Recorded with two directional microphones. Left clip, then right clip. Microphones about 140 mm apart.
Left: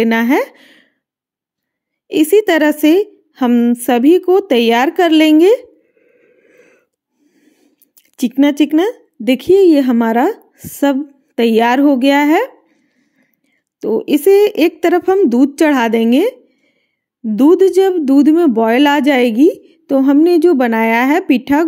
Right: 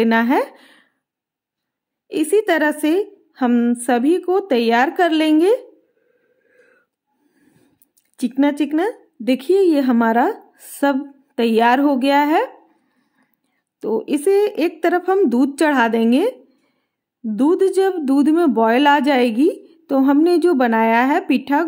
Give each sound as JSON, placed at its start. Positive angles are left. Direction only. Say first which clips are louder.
{"t": 0.0, "sound": "speech", "louder": "left 3 dB", "side_deg": 35}
{"t": 2.0, "sound": "a woman's voice", "louder": "left 6 dB", "side_deg": 40}
{"t": 6.0, "sound": "a sound", "louder": "left 10 dB", "side_deg": 60}
{"t": 7.3, "sound": "a sound", "louder": "left 4 dB", "side_deg": 20}
{"t": 8.0, "sound": "a woman's voice", "louder": "left 5 dB", "side_deg": 45}
{"t": 13.7, "sound": "a woman's voice", "louder": "left 6 dB", "side_deg": 30}
{"t": 15.1, "sound": "a woman's voice", "louder": "left 5 dB", "side_deg": 25}